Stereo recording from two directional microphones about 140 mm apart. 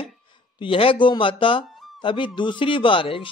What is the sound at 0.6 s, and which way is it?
Speech, 40° left (ahead or behind).